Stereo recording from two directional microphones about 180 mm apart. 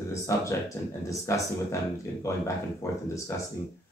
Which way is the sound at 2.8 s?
15° left (ahead or behind).